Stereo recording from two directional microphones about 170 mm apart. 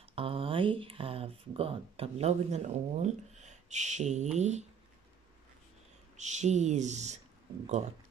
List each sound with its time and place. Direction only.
0.1 s speech: 35° right (ahead or behind)
6.1 s speech: 45° right (ahead or behind)